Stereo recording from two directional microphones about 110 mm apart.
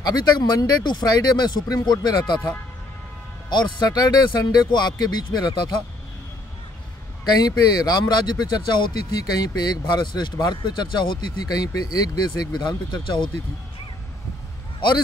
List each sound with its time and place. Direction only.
0.0 s speech: 40° left (ahead or behind)
7.2 s speech: 40° left (ahead or behind)